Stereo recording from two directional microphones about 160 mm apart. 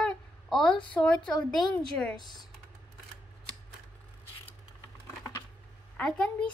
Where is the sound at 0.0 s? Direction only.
Centre (ahead or behind).